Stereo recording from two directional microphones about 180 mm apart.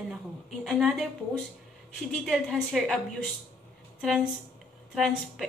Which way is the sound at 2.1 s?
Centre (ahead or behind).